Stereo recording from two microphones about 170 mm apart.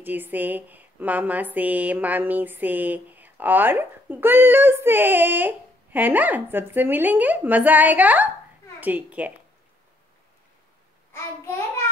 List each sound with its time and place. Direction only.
0.0 s a woman's voice: 10° right (ahead or behind)
11.1 s child singing: 15° left (ahead or behind)